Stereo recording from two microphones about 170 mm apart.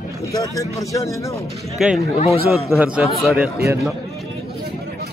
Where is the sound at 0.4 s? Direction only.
20° left (ahead or behind).